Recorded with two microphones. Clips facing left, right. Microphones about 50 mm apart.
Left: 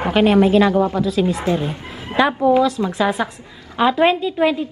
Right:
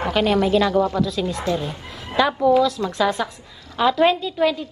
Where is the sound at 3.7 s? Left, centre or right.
Left.